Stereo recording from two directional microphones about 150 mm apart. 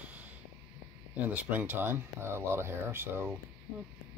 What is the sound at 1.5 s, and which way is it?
Speech, 15° right (ahead or behind).